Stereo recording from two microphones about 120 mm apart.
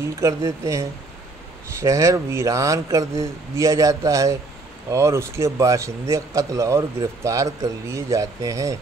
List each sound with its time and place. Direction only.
0.2 s speech: 25° right (ahead or behind)